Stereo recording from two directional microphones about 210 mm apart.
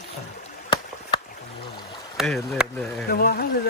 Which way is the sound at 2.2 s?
Centre (ahead or behind).